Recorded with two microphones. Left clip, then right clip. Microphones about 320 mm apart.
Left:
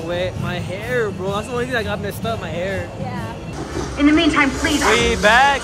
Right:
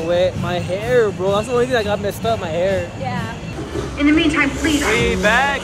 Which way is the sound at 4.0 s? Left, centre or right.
Left.